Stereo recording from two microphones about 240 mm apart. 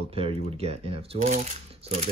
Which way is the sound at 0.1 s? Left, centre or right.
Right.